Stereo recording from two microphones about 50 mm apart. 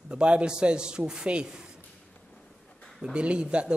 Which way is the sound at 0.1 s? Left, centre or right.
Right.